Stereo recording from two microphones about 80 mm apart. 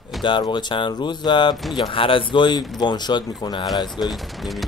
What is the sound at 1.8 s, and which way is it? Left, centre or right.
Speech, left.